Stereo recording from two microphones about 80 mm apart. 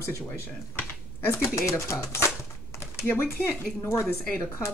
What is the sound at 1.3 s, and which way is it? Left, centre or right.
A woman's voice, left.